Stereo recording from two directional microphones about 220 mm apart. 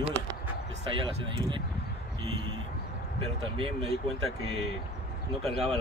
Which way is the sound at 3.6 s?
25° right (ahead or behind).